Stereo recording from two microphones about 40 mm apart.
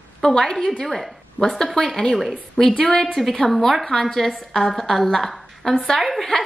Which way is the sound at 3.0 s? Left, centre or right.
Centre.